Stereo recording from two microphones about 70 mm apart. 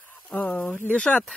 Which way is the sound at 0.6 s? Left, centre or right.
Left.